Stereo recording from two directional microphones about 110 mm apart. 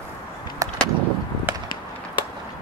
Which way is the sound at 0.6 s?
30° right (ahead or behind).